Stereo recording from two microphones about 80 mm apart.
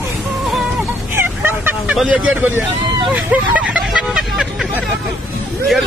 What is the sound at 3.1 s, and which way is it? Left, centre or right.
Speech, centre.